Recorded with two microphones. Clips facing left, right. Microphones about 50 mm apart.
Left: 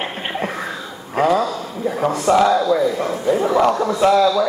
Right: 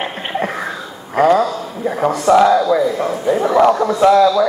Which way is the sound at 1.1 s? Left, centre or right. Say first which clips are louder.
Right 4 dB; right.